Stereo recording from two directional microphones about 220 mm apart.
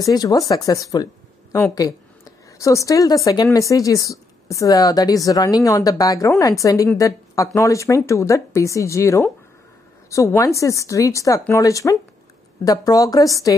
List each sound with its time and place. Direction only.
0.0 s speech: 15° left (ahead or behind)